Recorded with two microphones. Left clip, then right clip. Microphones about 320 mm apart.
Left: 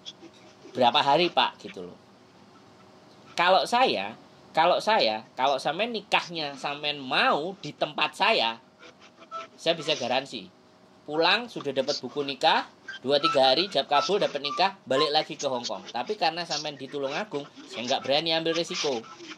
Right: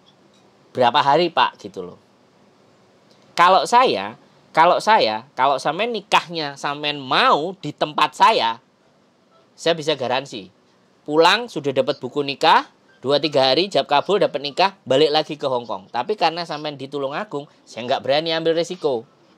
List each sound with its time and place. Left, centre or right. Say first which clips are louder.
0.7 s speech: right 6 dB; right
3.3 s speech: right 8 dB; right
9.6 s speech: right 7 dB; right